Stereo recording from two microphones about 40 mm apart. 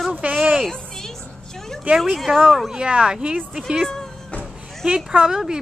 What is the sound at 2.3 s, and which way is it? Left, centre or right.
Speech, right.